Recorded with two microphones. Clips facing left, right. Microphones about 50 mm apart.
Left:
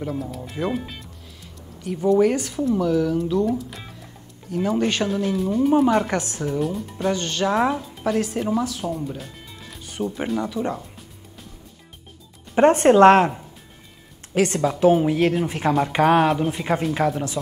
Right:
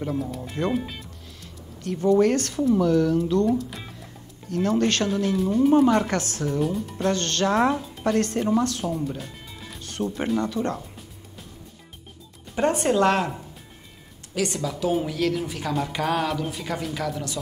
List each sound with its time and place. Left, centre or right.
0.0 s speech: centre
6.1 s speech: centre
12.5 s speech: left
14.3 s speech: left